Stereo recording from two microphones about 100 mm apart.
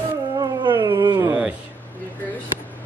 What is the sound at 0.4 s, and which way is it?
Howl, 40° right (ahead or behind).